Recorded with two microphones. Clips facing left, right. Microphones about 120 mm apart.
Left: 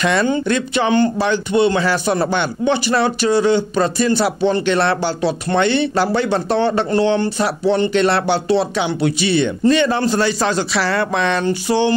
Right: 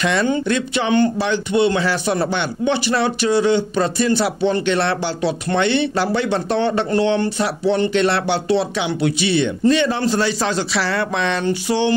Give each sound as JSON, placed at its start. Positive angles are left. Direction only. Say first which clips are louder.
{"t": 0.0, "sound": "speech", "louder": "left 2 dB", "side_deg": 50}